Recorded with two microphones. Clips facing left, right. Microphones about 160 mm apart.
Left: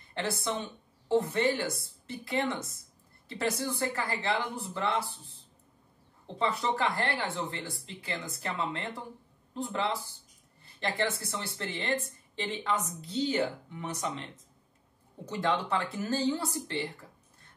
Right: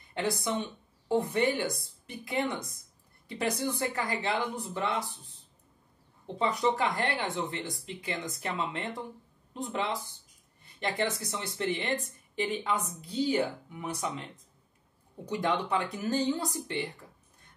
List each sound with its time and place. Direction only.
0.1 s a woman's voice: 15° right (ahead or behind)
6.3 s speech: 15° right (ahead or behind)
15.2 s speech: 15° right (ahead or behind)